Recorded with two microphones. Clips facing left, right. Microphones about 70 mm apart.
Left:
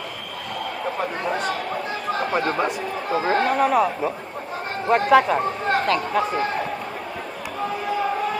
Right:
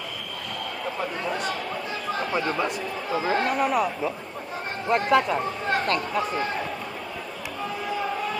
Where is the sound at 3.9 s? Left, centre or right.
Left.